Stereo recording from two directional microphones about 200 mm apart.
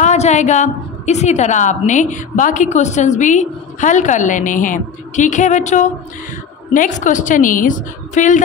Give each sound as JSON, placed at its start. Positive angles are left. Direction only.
{"t": 0.0, "sound": "a woman's voice", "side_deg": 35}